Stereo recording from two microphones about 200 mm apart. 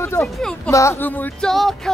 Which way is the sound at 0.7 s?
15° left (ahead or behind).